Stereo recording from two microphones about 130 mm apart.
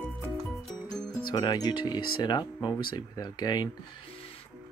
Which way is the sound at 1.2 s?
35° left (ahead or behind).